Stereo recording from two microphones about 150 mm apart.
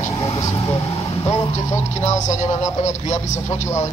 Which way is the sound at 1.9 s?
55° left (ahead or behind).